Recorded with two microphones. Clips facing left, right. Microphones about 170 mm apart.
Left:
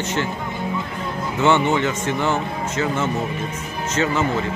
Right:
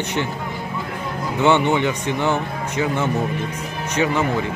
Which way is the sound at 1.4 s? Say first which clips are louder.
Right 1 dB; 15° right (ahead or behind).